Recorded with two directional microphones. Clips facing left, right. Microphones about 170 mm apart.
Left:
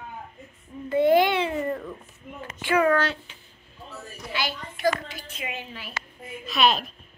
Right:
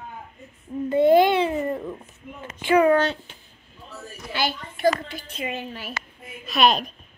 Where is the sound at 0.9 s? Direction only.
25° right (ahead or behind).